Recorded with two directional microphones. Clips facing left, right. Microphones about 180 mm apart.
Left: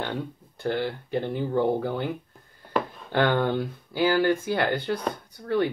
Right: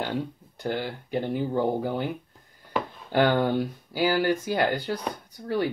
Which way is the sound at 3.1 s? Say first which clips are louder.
Right 1 dB; 15° right (ahead or behind).